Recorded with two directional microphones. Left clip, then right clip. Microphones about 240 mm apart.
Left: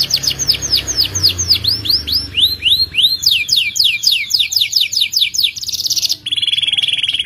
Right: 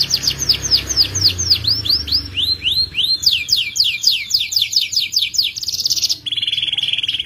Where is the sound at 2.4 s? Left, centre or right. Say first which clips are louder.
Left 6 dB; left.